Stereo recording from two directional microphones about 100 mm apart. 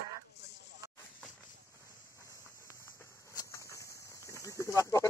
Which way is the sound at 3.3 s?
30° left (ahead or behind).